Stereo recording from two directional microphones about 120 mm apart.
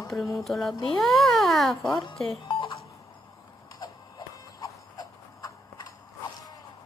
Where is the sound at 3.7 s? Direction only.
35° left (ahead or behind).